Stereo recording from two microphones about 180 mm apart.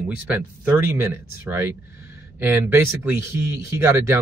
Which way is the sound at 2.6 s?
15° right (ahead or behind).